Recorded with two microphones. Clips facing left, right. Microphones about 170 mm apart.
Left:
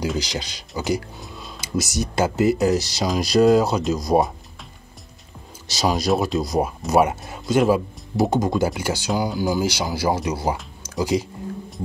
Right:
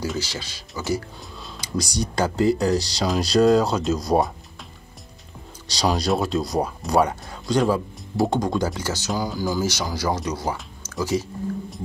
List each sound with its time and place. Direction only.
0.2 s speech: 15° left (ahead or behind)
1.2 s speech: centre (ahead or behind)
5.7 s speech: 5° left (ahead or behind)